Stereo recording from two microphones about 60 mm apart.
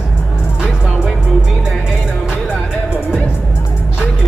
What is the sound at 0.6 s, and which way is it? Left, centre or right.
Music, centre.